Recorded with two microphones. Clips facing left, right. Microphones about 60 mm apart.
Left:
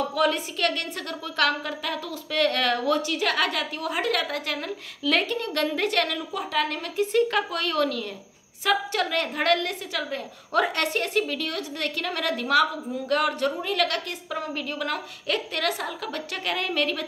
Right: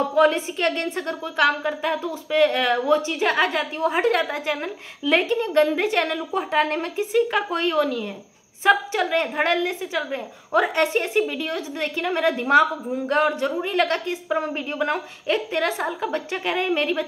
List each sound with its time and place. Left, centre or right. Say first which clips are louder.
0.1 s a woman's voice: right 6 dB; right
7.0 s speech: even; centre
7.4 s a woman's voice: right 4 dB; right